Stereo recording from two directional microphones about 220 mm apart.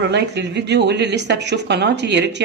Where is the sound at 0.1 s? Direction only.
50° right (ahead or behind).